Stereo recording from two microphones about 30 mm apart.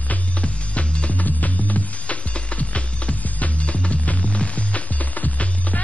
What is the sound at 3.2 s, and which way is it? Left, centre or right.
Music, left.